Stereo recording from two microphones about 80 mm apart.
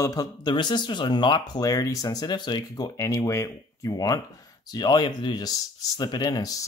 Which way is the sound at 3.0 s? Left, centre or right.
Left.